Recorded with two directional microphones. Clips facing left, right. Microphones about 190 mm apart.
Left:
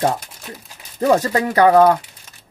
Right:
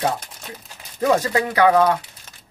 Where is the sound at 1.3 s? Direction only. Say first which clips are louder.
Left 3 dB; 40° left (ahead or behind).